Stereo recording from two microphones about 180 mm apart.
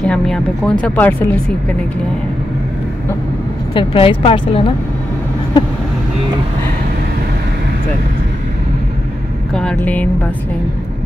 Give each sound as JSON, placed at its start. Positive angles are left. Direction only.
{"t": 0.0, "sound": "speech", "side_deg": 5}
{"t": 3.7, "sound": "a woman's voice", "side_deg": 30}
{"t": 9.5, "sound": "speech", "side_deg": 5}